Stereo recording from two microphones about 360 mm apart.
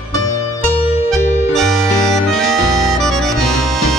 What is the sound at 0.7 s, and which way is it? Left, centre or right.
Music, centre.